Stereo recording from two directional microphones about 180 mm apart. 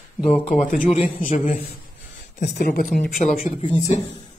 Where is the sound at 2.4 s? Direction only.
60° left (ahead or behind).